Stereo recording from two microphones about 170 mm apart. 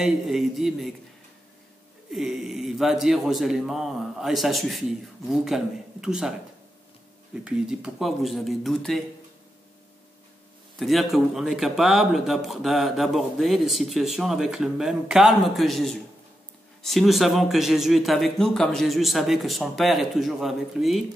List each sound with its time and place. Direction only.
0.0 s speech: centre (ahead or behind)
2.0 s speech: centre (ahead or behind)
7.4 s speech: 5° right (ahead or behind)
10.8 s speech: centre (ahead or behind)